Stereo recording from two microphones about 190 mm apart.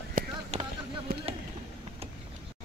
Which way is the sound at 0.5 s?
35° right (ahead or behind).